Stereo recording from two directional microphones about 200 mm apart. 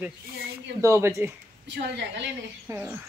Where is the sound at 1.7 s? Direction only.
60° right (ahead or behind).